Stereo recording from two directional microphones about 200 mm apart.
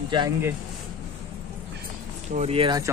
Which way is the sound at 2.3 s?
30° right (ahead or behind).